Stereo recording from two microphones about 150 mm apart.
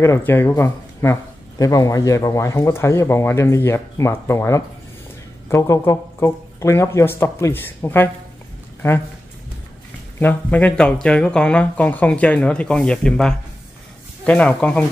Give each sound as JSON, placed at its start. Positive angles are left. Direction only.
{"t": 0.0, "sound": "speech", "side_deg": 15}
{"t": 10.1, "sound": "speech", "side_deg": 10}